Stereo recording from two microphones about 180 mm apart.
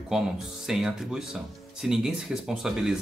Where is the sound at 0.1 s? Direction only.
Centre (ahead or behind).